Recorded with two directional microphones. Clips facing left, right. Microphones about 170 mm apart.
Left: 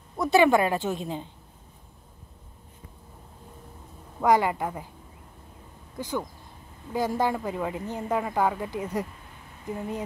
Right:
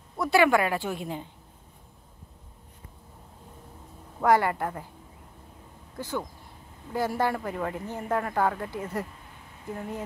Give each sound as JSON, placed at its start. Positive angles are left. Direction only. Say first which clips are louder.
{"t": 0.2, "sound": "speech", "louder": "left 2 dB", "side_deg": 20}
{"t": 4.2, "sound": "speech", "louder": "left 1 dB", "side_deg": 15}
{"t": 5.9, "sound": "speech", "louder": "left 2 dB", "side_deg": 15}